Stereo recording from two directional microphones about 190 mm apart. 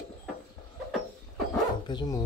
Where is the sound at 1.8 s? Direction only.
20° left (ahead or behind).